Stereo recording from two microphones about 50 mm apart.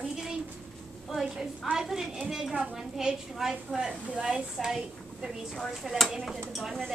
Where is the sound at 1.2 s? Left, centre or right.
Centre.